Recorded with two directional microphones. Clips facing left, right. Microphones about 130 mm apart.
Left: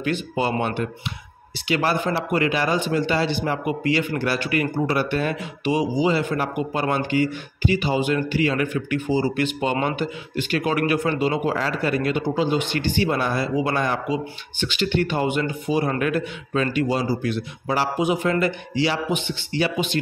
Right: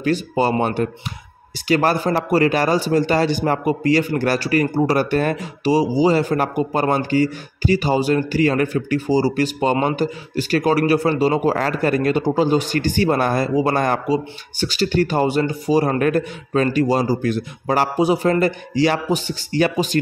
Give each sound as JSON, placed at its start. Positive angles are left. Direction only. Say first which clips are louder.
{"t": 0.0, "sound": "a man's voice", "louder": "right 5 dB", "side_deg": -40}